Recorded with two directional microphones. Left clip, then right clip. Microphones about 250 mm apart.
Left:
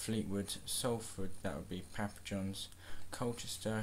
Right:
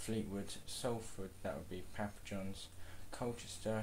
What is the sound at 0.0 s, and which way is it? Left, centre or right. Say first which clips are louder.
Speech: left 3 dB; left.